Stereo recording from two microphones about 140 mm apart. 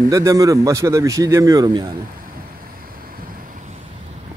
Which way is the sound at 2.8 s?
90° right.